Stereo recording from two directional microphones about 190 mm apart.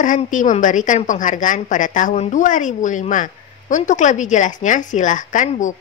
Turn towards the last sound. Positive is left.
turn(degrees=40)  # may be behind; listen again after turning